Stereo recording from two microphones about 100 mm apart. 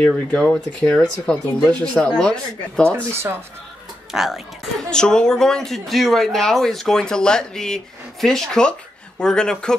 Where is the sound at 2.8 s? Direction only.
25° right (ahead or behind).